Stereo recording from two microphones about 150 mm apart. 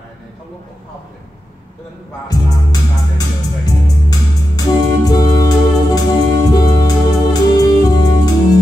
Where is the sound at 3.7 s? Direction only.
25° left (ahead or behind).